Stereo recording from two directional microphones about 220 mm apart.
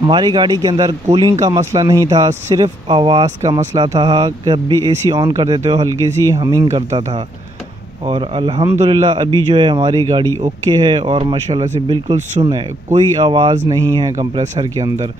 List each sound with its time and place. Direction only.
0.0 s speech: 20° right (ahead or behind)
8.0 s speech: 25° right (ahead or behind)
14.1 s speech: 35° right (ahead or behind)